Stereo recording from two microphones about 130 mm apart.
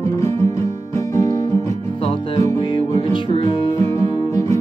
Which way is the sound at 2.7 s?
45° left (ahead or behind).